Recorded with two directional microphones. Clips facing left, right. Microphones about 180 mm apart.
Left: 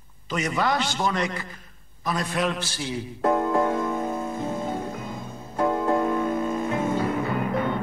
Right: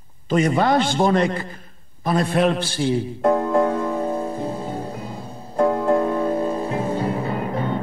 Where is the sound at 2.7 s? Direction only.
30° right (ahead or behind).